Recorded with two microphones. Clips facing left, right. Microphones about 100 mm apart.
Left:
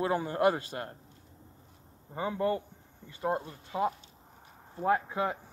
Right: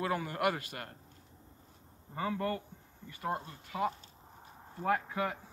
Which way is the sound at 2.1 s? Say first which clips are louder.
Left 4 dB; 20° left (ahead or behind).